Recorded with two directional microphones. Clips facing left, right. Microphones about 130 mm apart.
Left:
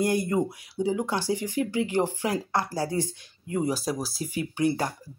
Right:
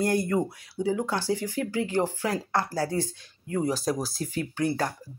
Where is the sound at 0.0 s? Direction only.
15° left (ahead or behind).